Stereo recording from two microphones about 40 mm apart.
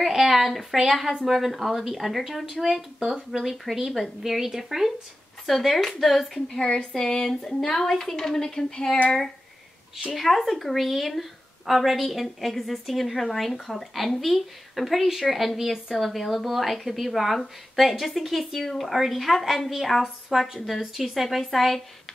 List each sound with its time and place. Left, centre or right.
0.0 s a sound: centre
1.2 s a woman's voice: centre
5.5 s speech: centre
10.1 s a woman's voice: centre